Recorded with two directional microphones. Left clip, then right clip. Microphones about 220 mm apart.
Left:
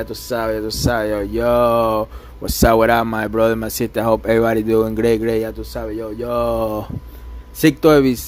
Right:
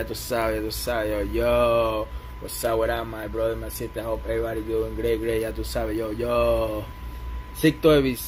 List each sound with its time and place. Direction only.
0.0 s speech: 25° left (ahead or behind)
5.6 s speech: 15° left (ahead or behind); by 8.2 s 35° left (ahead or behind)